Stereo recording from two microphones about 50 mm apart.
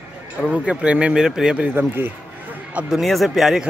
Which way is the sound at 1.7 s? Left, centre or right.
Right.